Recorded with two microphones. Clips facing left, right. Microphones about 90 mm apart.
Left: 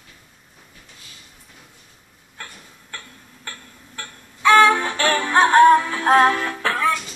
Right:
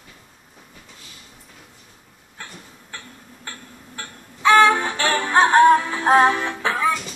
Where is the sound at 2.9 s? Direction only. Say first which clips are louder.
Even; 25° right (ahead or behind).